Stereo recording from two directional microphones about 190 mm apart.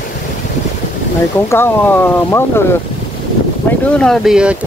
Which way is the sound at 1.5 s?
10° left (ahead or behind).